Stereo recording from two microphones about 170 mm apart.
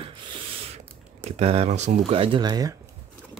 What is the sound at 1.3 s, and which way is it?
Speech, 40° right (ahead or behind).